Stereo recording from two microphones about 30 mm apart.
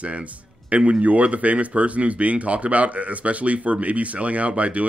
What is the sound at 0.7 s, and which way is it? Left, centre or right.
Speech, right.